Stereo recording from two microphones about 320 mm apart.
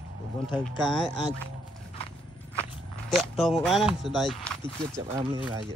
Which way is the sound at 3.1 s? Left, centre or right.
Centre.